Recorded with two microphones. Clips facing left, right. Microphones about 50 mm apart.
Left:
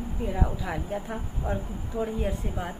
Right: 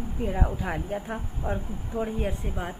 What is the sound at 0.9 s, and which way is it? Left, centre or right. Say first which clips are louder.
Speech: even; centre.